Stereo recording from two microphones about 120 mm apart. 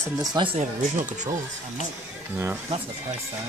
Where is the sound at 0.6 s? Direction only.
90° right.